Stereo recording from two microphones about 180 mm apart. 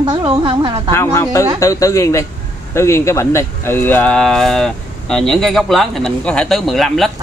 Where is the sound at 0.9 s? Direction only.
15° left (ahead or behind).